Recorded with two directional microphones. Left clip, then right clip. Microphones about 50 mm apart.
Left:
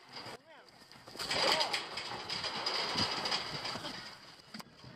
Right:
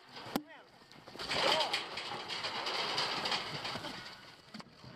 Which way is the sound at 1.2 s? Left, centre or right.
Left.